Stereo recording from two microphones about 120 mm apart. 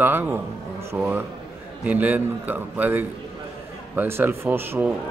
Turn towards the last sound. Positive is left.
turn(degrees=-15)  # may be behind; listen again after turning